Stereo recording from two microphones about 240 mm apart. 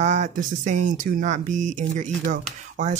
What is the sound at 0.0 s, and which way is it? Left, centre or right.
Speech, right.